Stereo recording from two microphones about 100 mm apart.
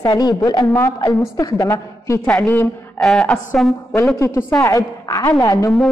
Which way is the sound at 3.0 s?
5° left (ahead or behind).